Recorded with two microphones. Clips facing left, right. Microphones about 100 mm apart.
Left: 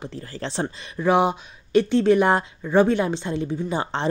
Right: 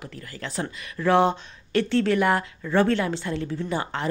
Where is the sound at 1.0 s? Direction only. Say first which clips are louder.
Left 1 dB; 15° left (ahead or behind).